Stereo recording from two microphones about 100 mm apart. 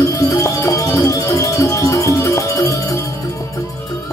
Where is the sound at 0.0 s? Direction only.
30° left (ahead or behind).